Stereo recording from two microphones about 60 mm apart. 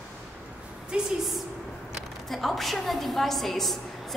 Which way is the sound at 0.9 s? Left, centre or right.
Centre.